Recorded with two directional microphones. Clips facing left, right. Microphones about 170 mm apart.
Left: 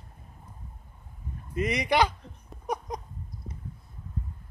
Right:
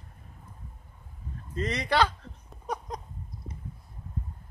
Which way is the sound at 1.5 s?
15° left (ahead or behind).